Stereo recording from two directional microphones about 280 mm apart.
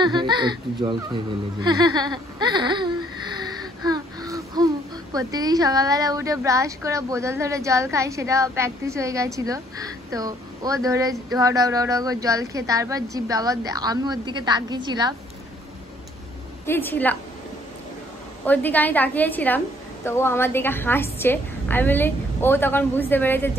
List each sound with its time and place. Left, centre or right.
0.0 s speech: centre
1.6 s a sound: centre
5.1 s a woman's voice: centre
16.6 s a woman's voice: centre
18.4 s a woman's voice: centre